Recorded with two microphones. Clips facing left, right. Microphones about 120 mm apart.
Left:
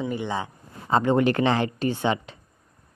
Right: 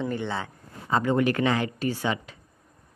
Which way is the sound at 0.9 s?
30° left (ahead or behind).